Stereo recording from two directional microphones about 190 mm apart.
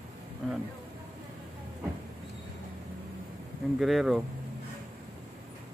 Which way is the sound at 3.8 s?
Centre (ahead or behind).